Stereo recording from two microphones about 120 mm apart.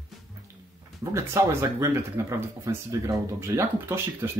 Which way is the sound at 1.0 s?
25° right (ahead or behind).